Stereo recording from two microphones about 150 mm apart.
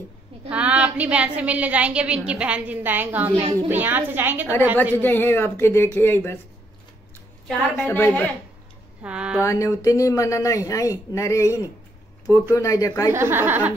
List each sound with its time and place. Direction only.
0.5 s a woman's voice: 10° right (ahead or behind)
5.0 s speech: 15° left (ahead or behind)
7.7 s speech: 15° left (ahead or behind)
9.0 s a woman's voice: 5° right (ahead or behind)
9.4 s speech: 20° left (ahead or behind)
13.1 s a woman's voice: 15° right (ahead or behind)